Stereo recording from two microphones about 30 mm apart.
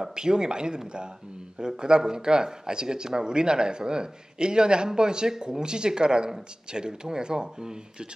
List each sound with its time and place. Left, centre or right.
0.0 s speech: right